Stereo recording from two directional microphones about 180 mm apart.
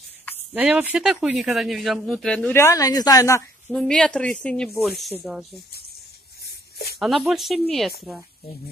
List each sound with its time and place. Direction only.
0.5 s speech: 5° right (ahead or behind); by 3.4 s 15° left (ahead or behind)
3.7 s speech: 5° left (ahead or behind)
6.4 s a sound: 60° left (ahead or behind)
7.0 s speech: centre (ahead or behind)